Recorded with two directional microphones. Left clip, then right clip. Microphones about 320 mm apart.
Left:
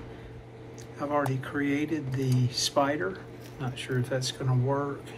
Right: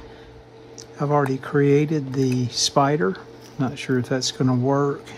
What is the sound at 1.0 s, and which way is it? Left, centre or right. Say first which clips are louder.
Speech: right 7 dB; centre.